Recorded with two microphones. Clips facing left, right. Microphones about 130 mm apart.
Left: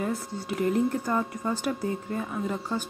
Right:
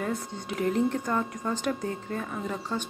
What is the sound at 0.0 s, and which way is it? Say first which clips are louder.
Speech: left 1 dB; 5° left (ahead or behind).